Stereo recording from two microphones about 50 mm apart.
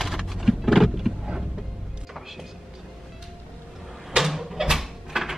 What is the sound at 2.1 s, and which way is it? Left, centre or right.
Music, centre.